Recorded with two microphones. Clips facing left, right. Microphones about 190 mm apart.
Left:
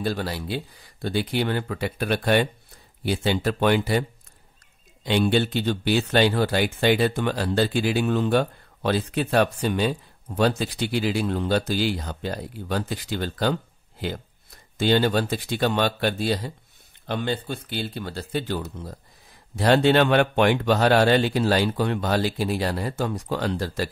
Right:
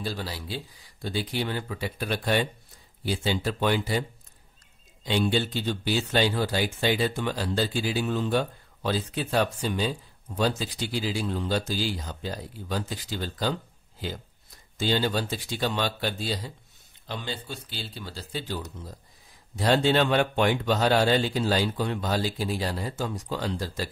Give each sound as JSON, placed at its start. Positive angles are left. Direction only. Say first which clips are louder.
{"t": 0.0, "sound": "speech", "louder": "left 6 dB", "side_deg": 60}
{"t": 5.0, "sound": "speech", "louder": "left 4 dB", "side_deg": 65}